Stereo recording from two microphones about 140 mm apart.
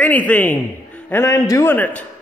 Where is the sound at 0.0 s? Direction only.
10° left (ahead or behind).